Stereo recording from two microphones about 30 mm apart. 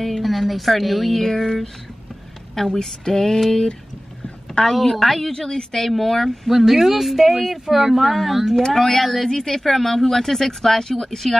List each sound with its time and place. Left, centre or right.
0.0 s speech: centre
4.6 s speech: centre
5.6 s speech: centre
8.7 s speech: centre